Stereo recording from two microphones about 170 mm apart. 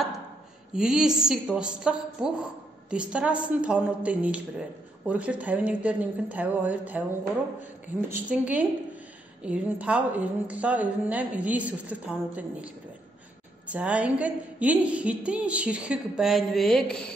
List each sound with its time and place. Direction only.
0.7 s a woman's voice: 5° right (ahead or behind)
8.1 s a woman's voice: 10° right (ahead or behind)